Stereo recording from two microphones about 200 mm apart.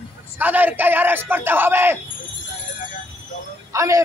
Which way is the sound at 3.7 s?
15° right (ahead or behind).